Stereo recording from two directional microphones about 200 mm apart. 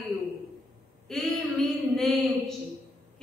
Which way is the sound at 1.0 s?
Centre (ahead or behind).